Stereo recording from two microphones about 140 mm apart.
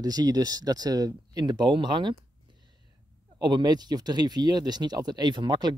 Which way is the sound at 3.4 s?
30° right (ahead or behind).